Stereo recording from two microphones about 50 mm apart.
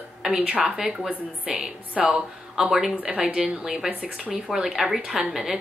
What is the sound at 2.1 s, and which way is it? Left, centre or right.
Speech, centre.